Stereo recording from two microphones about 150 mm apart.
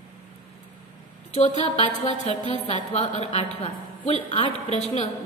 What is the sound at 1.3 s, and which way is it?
A man's voice, 50° left (ahead or behind).